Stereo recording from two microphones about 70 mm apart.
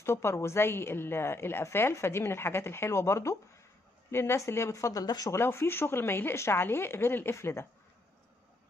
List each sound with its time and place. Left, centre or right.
0.0 s a woman's voice: left
5.0 s speech: left
5.3 s a woman's voice: left